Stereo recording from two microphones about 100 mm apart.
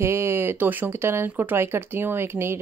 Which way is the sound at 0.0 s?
25° right (ahead or behind).